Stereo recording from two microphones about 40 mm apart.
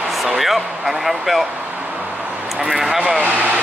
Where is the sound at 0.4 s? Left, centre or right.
Centre.